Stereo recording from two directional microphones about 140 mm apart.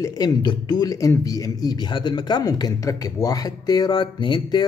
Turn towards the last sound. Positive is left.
turn(degrees=30)  # may be behind; listen again after turning